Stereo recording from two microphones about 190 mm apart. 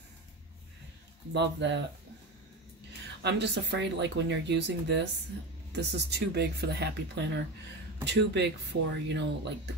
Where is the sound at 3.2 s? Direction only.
65° right (ahead or behind).